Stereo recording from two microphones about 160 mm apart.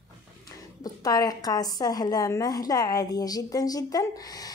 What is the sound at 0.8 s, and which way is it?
A woman's voice, 25° left (ahead or behind).